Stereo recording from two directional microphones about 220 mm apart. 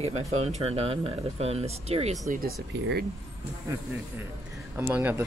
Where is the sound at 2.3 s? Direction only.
45° right (ahead or behind).